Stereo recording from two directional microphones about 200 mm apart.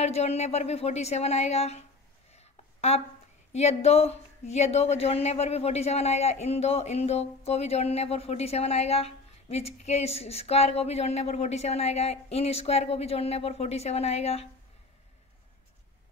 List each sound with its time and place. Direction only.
0.0 s speech: 30° left (ahead or behind)
2.3 s a sound: 30° left (ahead or behind)
3.5 s speech: 30° left (ahead or behind)